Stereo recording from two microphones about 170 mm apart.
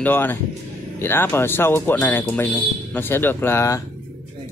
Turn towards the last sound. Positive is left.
turn(degrees=15)  # may be behind; listen again after turning